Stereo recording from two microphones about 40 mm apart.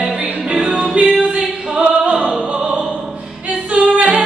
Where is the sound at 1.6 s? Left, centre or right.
Right.